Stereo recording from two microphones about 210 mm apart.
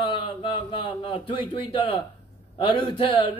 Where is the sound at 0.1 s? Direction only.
25° left (ahead or behind).